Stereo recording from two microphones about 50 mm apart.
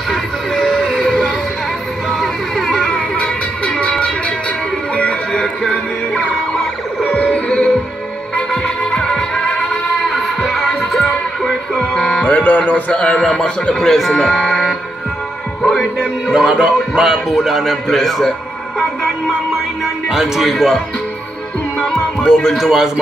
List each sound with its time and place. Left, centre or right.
0.1 s a sound: centre
1.0 s music: centre
5.4 s music: centre
6.5 s emergency vehicle: centre
7.1 s music: left
9.4 s music: left
10.0 s music: centre
11.7 s music: left
12.3 s music: left
12.9 s a man's voice: centre
16.3 s a man's voice: centre
19.8 s speech: centre
21.8 s music: centre
22.6 s speech: centre